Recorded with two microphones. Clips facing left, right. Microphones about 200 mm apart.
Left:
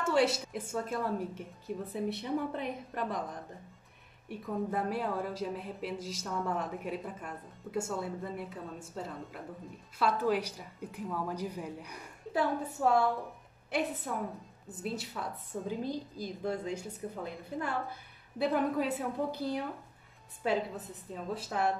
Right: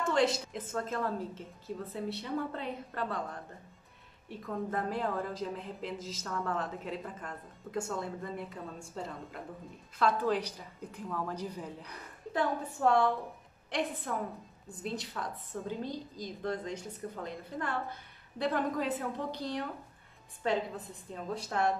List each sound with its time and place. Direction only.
0.0 s a woman's voice: 5° left (ahead or behind)